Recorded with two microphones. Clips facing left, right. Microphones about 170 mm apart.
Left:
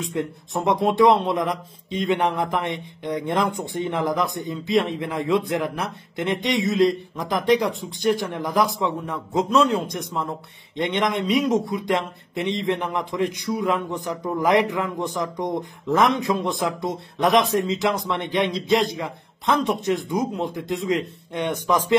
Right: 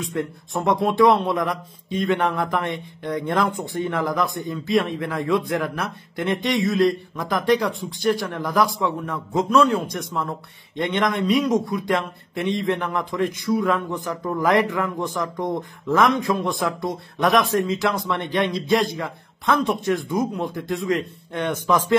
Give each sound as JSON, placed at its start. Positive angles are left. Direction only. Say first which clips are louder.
{"t": 0.0, "sound": "a man's voice", "louder": "even", "side_deg": 20}